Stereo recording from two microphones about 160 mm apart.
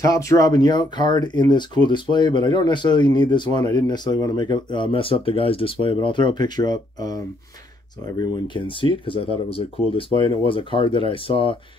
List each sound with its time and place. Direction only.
0.0 s speech: 20° left (ahead or behind)
8.2 s speech: 30° left (ahead or behind)